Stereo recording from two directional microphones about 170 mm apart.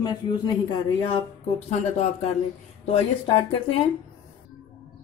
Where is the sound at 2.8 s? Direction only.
35° left (ahead or behind).